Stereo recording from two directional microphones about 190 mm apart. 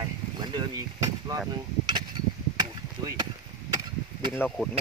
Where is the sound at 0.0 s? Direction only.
25° right (ahead or behind).